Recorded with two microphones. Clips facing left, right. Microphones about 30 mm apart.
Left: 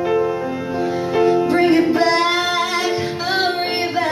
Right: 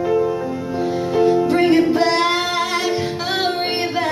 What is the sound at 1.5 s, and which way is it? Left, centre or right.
Music, centre.